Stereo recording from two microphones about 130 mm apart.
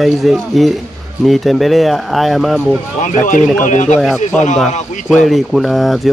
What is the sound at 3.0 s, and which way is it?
A man's voice, 85° left.